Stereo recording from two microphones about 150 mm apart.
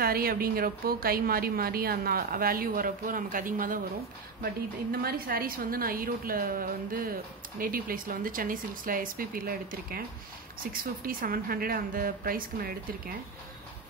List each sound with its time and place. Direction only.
0.0 s a woman's voice: 80° right
5.0 s a woman's voice: 85° right